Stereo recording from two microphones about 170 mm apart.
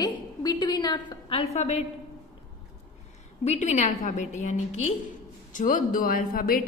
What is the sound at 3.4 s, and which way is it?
A woman's voice, 40° left (ahead or behind).